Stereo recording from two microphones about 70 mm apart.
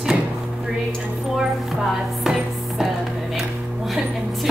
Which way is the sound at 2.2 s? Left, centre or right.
Centre.